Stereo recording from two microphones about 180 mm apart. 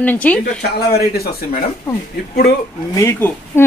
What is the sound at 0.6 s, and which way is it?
Speech, 60° left (ahead or behind).